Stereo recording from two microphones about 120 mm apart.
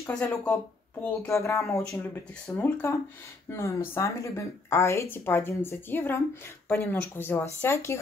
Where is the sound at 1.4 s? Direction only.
25° left (ahead or behind).